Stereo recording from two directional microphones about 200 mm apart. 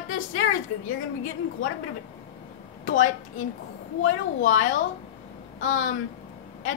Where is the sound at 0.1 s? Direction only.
80° left.